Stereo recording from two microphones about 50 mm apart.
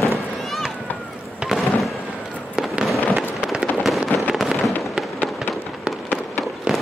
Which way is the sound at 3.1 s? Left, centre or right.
Centre.